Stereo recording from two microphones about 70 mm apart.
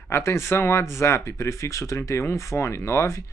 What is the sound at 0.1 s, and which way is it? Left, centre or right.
Speech, left.